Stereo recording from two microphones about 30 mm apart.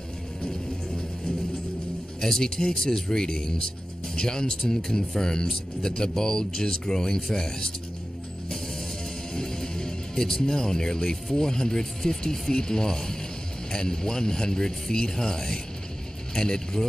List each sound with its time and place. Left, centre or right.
0.5 s music: left
2.7 s speech: left
9.3 s music: centre
11.3 s speech: centre